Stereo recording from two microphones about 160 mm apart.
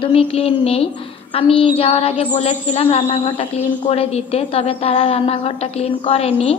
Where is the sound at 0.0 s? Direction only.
35° left (ahead or behind).